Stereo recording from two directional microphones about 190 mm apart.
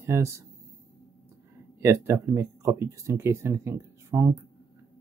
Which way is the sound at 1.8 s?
15° right (ahead or behind).